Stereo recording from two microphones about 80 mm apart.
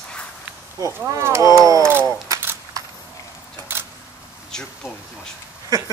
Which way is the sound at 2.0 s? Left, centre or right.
Right.